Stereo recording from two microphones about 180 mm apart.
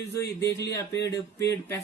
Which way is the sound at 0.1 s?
15° left (ahead or behind).